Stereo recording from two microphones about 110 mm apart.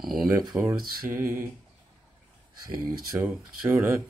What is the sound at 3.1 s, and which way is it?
Speech, 15° right (ahead or behind).